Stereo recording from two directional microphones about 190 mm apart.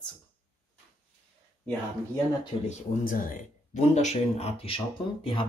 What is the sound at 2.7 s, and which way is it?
Speech, 45° left (ahead or behind).